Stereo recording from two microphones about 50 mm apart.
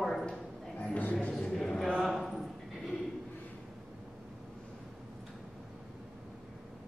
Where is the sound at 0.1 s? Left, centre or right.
Centre.